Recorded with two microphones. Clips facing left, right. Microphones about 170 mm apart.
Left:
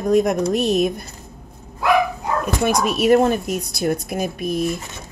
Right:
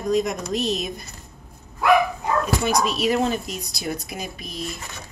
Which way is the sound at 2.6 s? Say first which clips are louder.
Left 4 dB; 55° left (ahead or behind).